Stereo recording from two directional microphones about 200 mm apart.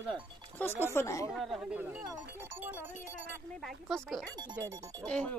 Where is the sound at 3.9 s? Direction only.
Centre (ahead or behind).